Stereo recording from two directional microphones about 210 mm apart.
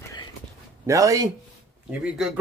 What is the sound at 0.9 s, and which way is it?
Speech, 15° right (ahead or behind).